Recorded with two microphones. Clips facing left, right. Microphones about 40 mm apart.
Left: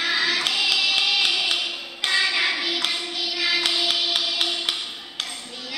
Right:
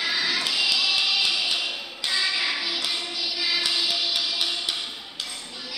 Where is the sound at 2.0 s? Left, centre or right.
Left.